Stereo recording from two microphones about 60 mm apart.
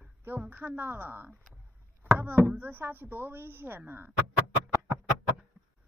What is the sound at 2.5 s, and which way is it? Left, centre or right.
Speech, right.